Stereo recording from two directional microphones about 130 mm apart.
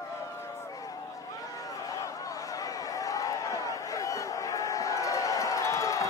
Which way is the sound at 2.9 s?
25° left (ahead or behind).